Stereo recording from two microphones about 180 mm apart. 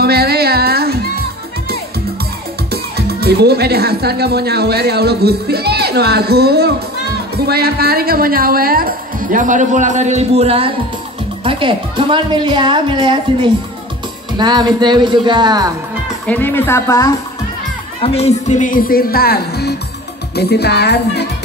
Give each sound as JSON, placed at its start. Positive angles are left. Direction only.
{"t": 0.0, "sound": "music", "side_deg": -60}
{"t": 2.7, "sound": "a woman's voice", "side_deg": -60}
{"t": 16.3, "sound": "a woman's voice", "side_deg": 10}
{"t": 18.0, "sound": "speech", "side_deg": 35}
{"t": 20.3, "sound": "music", "side_deg": 65}